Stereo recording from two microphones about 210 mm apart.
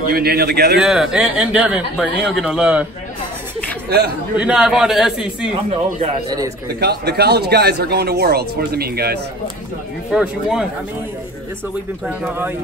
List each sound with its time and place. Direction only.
0.1 s speech: 50° right (ahead or behind)
0.7 s speech: 5° right (ahead or behind)
4.4 s speech: 5° right (ahead or behind)
5.7 s speech: 30° right (ahead or behind)
6.7 s speech: 50° right (ahead or behind)
10.1 s speech: 5° right (ahead or behind)
12.1 s speech: 10° right (ahead or behind)